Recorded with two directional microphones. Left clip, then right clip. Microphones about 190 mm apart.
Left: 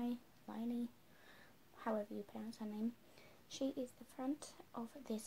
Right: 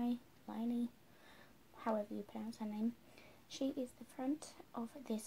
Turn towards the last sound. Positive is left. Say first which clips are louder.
# right 2 dB
turn(degrees=5)  # may be behind; listen again after turning